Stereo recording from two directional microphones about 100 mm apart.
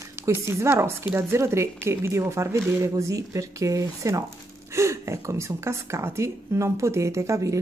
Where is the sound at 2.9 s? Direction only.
35° right (ahead or behind).